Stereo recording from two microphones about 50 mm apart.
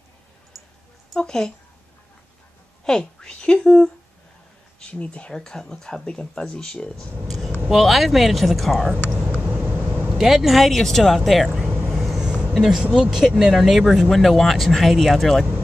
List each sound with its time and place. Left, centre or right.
1.1 s speech: centre
2.8 s speech: centre
4.9 s speech: left
5.3 s speech: centre
7.2 s vehicle: centre
7.7 s speech: centre
9.3 s vehicle: right
10.0 s speech: centre
11.9 s vehicle: centre
12.2 s a sound: centre
12.5 s speech: centre